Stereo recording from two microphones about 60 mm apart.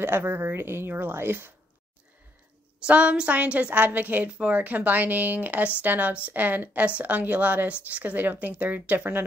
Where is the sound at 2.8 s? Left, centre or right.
Centre.